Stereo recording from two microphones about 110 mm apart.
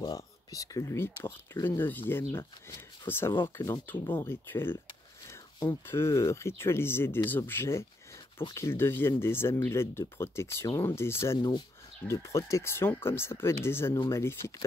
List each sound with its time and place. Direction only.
0.0 s speech: 35° left (ahead or behind)